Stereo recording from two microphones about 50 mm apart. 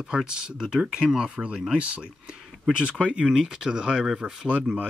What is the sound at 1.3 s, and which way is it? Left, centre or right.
Speech, right.